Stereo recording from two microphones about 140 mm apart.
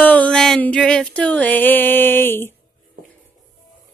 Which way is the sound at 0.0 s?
10° left (ahead or behind).